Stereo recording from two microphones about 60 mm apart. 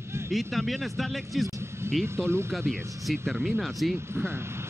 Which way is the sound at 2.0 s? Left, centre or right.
Right.